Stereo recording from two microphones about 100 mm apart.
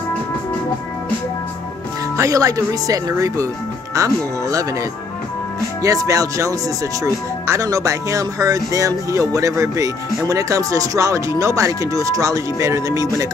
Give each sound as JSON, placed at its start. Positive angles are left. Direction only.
{"t": 2.1, "sound": "speech", "side_deg": -35}
{"t": 5.8, "sound": "speech", "side_deg": -35}